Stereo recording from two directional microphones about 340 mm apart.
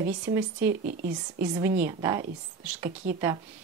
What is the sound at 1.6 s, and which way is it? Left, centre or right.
Speech, centre.